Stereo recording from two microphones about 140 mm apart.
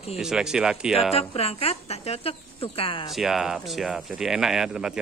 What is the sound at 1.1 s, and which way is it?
Speech, 45° left (ahead or behind).